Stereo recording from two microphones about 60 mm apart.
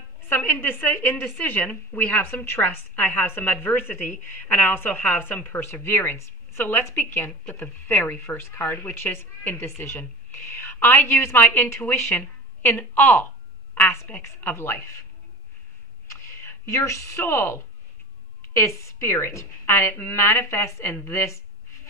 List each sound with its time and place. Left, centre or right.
0.5 s a woman's voice: left
11.9 s a woman's voice: left
16.1 s a sound: left
17.2 s a woman's voice: left
18.5 s speech: left